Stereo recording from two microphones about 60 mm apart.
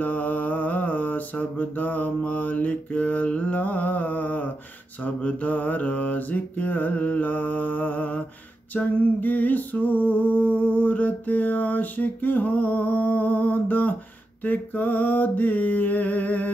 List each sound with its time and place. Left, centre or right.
0.0 s mantra: left
8.7 s a sound: left
14.4 s mantra: left